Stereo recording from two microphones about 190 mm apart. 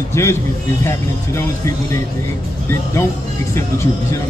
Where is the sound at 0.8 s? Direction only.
15° left (ahead or behind).